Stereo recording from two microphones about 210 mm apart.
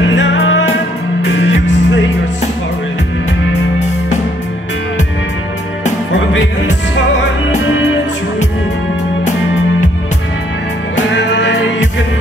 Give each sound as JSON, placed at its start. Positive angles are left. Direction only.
{"t": 0.0, "sound": "music", "side_deg": 60}
{"t": 11.0, "sound": "music", "side_deg": 60}